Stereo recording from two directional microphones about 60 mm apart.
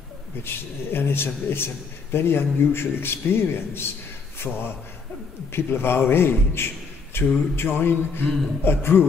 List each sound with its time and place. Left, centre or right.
0.4 s a man's voice: left
4.5 s a man's voice: centre
5.5 s a man's voice: left
7.1 s a sound: left
7.5 s a man's voice: left